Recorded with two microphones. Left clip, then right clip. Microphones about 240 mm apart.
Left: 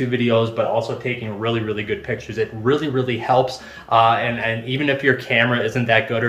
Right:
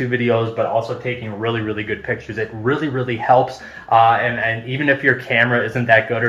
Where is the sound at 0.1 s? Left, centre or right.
Centre.